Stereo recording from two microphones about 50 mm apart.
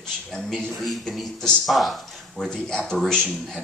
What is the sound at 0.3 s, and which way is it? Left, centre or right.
Speech, centre.